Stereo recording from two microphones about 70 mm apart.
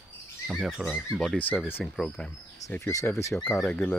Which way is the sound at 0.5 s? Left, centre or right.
Centre.